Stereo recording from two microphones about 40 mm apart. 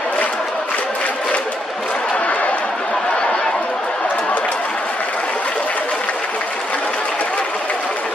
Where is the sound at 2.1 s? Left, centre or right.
Left.